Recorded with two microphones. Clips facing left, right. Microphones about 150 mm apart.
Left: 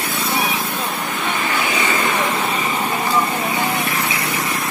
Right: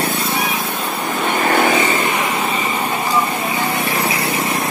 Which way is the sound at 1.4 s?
50° right (ahead or behind).